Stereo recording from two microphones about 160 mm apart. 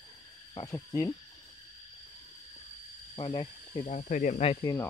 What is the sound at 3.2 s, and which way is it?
Speech, 30° left (ahead or behind).